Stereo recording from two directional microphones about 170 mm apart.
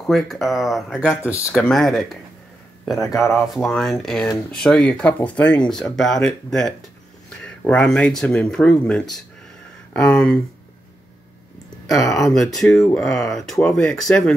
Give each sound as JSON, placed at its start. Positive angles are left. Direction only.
{"t": 0.0, "sound": "speech", "side_deg": 0}
{"t": 0.9, "sound": "speech", "side_deg": 15}
{"t": 1.5, "sound": "speech", "side_deg": 5}
{"t": 3.2, "sound": "speech", "side_deg": 0}
{"t": 12.1, "sound": "speech", "side_deg": 0}